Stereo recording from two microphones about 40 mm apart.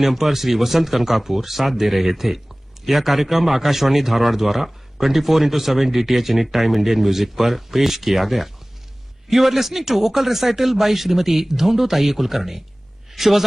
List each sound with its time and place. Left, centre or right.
0.0 s a man's voice: centre